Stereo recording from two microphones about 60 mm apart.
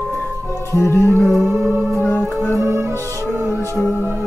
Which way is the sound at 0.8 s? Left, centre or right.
Left.